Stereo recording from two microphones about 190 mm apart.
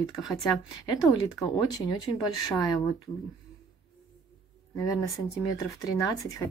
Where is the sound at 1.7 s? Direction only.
20° left (ahead or behind).